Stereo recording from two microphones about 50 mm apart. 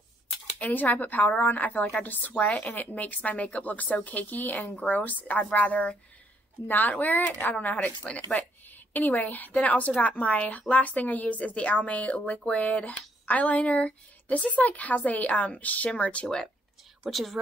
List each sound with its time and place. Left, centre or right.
0.6 s a woman's voice: left
17.0 s a woman's voice: centre